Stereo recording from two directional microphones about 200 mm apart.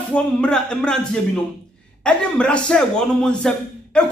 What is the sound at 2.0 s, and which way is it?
A man's voice, 5° left (ahead or behind).